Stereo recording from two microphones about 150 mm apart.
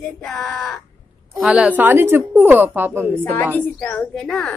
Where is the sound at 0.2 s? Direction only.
Centre (ahead or behind); by 3.2 s 15° right (ahead or behind).